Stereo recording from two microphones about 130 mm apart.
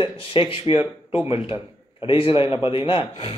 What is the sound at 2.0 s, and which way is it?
A man's voice, 45° left (ahead or behind).